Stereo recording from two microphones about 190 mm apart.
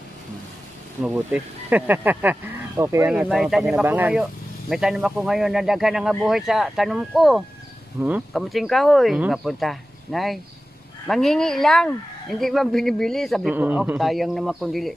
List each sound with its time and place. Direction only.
1.0 s speech: 10° right (ahead or behind)
3.1 s speech: 5° right (ahead or behind)